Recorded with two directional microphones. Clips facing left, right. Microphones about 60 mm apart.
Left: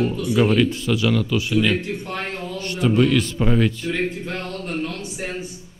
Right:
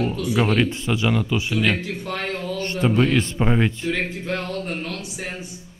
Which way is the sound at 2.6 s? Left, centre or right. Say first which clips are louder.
Right 2 dB; right.